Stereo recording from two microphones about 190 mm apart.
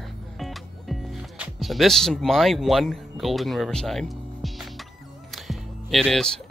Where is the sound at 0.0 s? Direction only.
Centre (ahead or behind).